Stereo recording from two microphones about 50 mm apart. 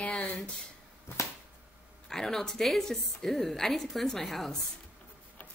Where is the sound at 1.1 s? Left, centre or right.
Left.